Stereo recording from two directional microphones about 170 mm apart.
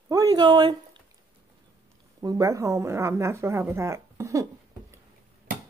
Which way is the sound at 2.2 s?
20° right (ahead or behind).